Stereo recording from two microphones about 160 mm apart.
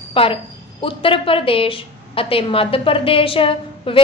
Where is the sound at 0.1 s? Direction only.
35° left (ahead or behind).